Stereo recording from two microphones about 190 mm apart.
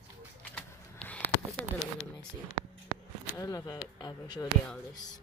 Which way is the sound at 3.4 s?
20° left (ahead or behind).